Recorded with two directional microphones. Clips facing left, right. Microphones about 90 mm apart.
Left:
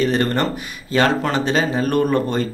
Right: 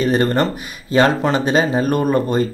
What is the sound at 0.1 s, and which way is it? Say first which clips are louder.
Speech: right 3 dB; 20° right (ahead or behind).